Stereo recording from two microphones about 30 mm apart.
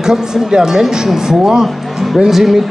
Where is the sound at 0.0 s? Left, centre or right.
Right.